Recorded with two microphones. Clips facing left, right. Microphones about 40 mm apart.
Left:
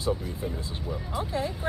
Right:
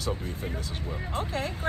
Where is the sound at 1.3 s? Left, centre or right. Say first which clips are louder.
Left 2 dB; right.